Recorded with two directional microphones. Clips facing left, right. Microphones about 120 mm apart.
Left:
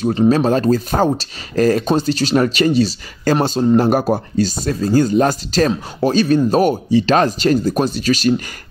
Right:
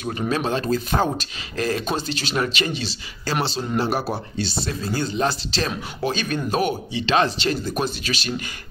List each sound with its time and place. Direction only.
0.0 s speech: 30° left (ahead or behind)